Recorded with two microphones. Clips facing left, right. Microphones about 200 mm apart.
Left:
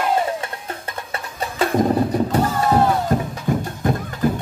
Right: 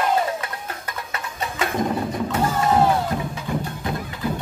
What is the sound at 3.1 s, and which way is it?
Music, 45° left (ahead or behind).